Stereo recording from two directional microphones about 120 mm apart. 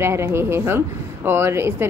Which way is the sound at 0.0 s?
20° right (ahead or behind).